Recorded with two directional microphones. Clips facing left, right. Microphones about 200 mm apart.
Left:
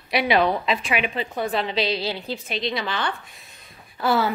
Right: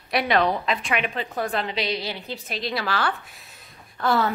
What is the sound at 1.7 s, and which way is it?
Speech, 25° left (ahead or behind).